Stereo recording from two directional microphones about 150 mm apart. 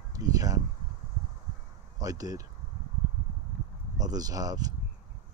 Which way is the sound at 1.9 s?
25° right (ahead or behind).